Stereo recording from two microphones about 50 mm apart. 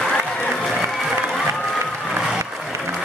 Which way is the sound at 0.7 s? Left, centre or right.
Centre.